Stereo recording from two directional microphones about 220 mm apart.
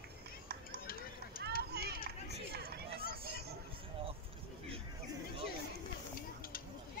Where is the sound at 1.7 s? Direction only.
45° right (ahead or behind).